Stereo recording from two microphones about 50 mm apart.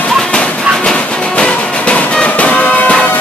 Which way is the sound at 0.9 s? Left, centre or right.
Left.